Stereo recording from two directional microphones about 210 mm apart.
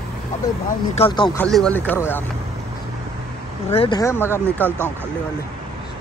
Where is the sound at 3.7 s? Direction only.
25° left (ahead or behind).